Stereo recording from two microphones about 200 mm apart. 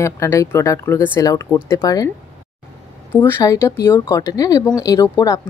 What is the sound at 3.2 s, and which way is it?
A woman's voice, 15° left (ahead or behind).